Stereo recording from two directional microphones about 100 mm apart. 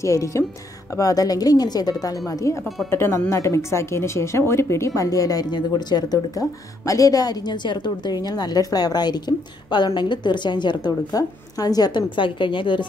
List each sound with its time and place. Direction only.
0.0 s a woman's voice: 35° left (ahead or behind); by 12.8 s 55° left (ahead or behind)